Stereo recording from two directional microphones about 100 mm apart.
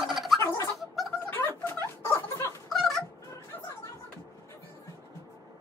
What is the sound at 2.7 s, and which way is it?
Music, centre (ahead or behind).